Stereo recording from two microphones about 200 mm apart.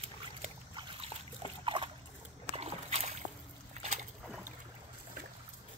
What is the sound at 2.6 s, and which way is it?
Slosh, 30° right (ahead or behind).